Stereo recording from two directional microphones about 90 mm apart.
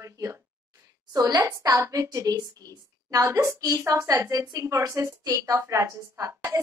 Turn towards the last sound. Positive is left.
turn(degrees=-35)  # may be behind; listen again after turning